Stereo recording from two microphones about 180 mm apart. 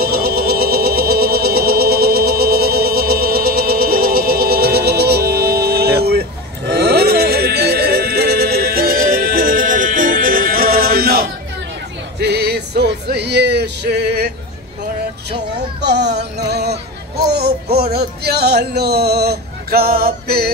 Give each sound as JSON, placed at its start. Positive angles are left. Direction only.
{"t": 0.0, "sound": "a sound", "side_deg": -55}
{"t": 12.2, "sound": "music", "side_deg": -65}
{"t": 15.8, "sound": "music", "side_deg": -65}